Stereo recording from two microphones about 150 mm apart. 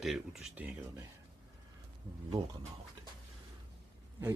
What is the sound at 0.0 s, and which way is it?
Speech, centre (ahead or behind).